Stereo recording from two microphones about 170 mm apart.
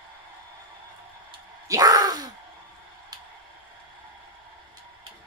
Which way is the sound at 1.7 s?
20° right (ahead or behind).